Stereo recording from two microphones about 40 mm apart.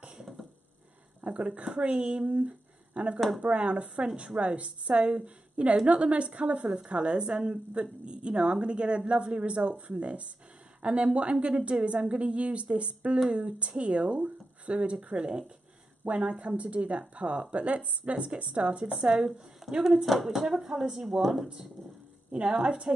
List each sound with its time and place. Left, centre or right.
1.2 s a woman's voice: right
16.3 s a woman's voice: right
19.0 s a woman's voice: centre
22.3 s a woman's voice: right